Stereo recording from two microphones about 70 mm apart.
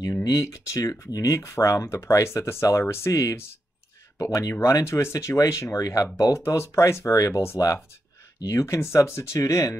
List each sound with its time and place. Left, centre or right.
0.2 s speech: left
6.1 s speech: left
6.4 s speech: left